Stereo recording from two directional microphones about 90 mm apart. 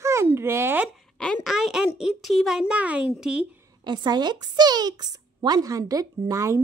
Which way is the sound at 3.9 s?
55° right (ahead or behind).